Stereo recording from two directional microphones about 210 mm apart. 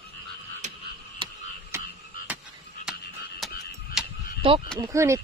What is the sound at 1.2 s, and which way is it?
Frog, 15° right (ahead or behind).